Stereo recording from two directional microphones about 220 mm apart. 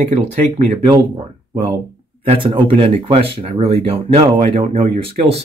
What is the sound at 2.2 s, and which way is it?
Speech, 25° right (ahead or behind).